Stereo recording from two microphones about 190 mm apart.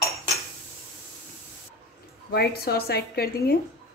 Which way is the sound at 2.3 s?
55° left (ahead or behind).